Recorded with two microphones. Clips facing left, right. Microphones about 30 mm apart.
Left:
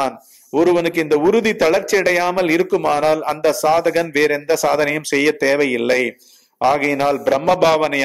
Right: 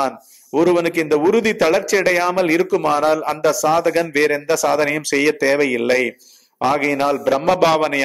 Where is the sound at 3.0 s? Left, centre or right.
Left.